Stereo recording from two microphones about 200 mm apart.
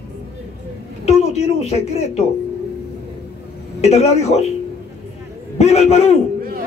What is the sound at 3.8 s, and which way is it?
Speech, 35° left (ahead or behind).